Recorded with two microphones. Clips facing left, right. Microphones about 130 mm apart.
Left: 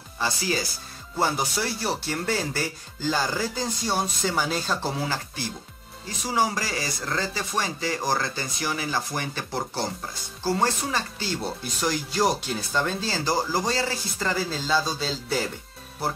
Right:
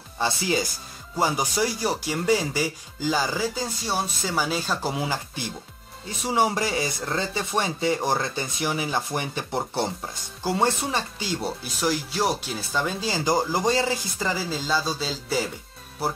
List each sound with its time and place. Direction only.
0.2 s speech: 20° right (ahead or behind)
1.1 s speech: 10° right (ahead or behind)
11.4 s speech: 5° right (ahead or behind)
14.3 s speech: 5° right (ahead or behind)